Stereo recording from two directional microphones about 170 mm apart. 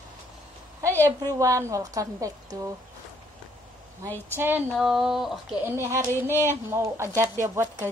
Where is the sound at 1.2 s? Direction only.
20° right (ahead or behind).